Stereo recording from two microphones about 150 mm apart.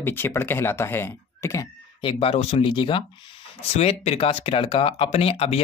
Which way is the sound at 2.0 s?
40° left (ahead or behind).